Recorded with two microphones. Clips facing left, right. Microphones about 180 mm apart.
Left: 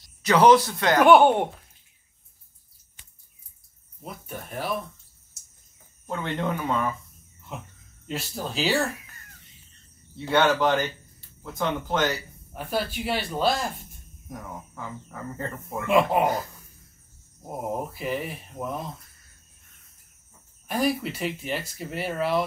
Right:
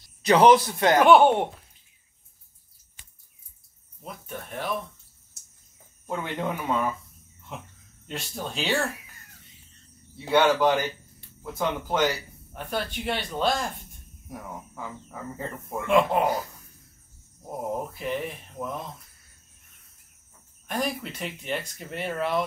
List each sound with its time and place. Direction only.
0.2 s speech: 20° right (ahead or behind)
1.0 s speech: centre (ahead or behind)
4.0 s speech: 5° left (ahead or behind)
6.0 s speech: 10° right (ahead or behind)
10.1 s speech: 10° right (ahead or behind)
12.5 s speech: 5° left (ahead or behind)
14.3 s speech: 10° right (ahead or behind)
15.7 s speech: 5° left (ahead or behind)
17.5 s speech: 5° left (ahead or behind)
20.6 s speech: 5° left (ahead or behind)